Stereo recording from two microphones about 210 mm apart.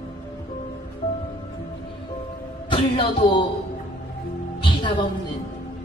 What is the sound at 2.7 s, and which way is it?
Speech, 25° left (ahead or behind).